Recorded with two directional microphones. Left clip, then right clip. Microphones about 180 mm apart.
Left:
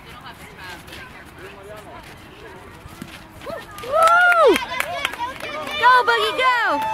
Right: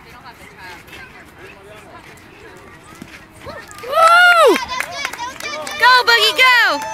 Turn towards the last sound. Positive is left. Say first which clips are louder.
# right 6 dB
turn(degrees=-5)  # may be behind; listen again after turning